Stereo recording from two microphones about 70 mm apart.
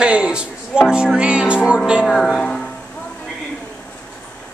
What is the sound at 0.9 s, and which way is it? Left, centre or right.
Speech, centre.